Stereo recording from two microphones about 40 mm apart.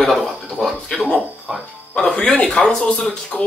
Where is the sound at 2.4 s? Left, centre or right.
Centre.